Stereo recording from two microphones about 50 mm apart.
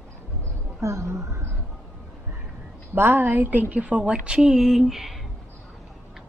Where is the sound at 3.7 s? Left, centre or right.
Right; by 5.2 s centre.